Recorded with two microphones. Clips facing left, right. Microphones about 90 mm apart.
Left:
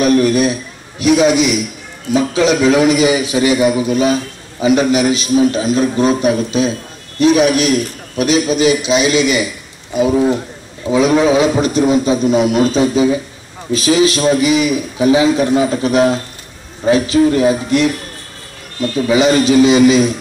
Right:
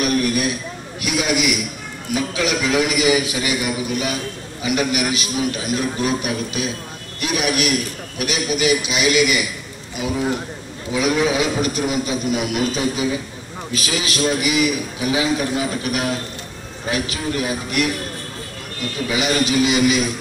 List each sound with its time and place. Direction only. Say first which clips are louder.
0.0 s a man's voice: left 8 dB; 30° left (ahead or behind)
10.9 s a man's voice: left 8 dB; 30° left (ahead or behind)
19.0 s a man's voice: left 9 dB; 30° left (ahead or behind)